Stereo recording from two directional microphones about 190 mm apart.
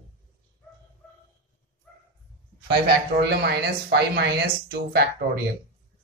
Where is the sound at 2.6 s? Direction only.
60° right (ahead or behind).